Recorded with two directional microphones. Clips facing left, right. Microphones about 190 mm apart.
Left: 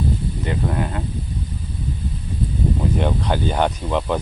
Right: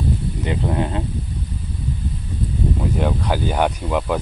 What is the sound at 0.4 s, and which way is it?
Speech, 20° right (ahead or behind).